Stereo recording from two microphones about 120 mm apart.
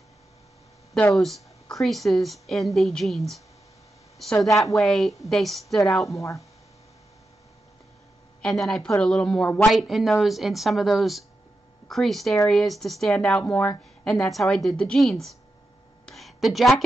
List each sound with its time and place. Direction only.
1.1 s speech: centre (ahead or behind)
6.1 s speech: 25° left (ahead or behind)
8.4 s speech: 5° left (ahead or behind)
16.1 s a sound: centre (ahead or behind)